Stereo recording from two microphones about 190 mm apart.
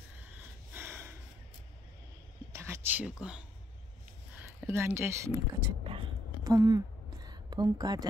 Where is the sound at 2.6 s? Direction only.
10° right (ahead or behind).